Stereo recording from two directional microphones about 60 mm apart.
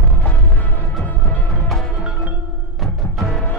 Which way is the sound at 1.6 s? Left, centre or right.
Centre.